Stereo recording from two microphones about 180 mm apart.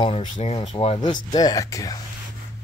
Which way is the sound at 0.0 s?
35° left (ahead or behind).